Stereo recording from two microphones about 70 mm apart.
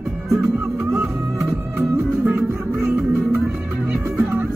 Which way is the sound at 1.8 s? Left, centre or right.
Right.